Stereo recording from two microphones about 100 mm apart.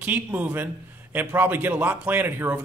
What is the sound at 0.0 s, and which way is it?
A man's voice, 15° right (ahead or behind).